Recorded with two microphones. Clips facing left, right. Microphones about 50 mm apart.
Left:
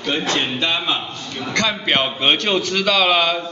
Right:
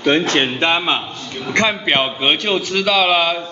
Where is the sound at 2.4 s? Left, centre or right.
Centre.